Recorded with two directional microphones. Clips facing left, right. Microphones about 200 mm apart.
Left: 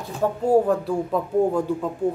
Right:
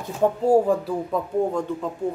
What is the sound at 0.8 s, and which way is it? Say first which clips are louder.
Speech: left 2 dB; 5° left (ahead or behind).